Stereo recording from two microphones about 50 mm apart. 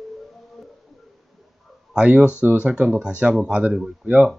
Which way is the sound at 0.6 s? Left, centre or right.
Centre.